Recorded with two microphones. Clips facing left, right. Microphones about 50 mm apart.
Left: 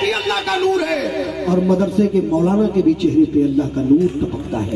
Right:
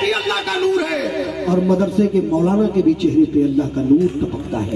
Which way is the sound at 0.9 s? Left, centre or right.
Centre.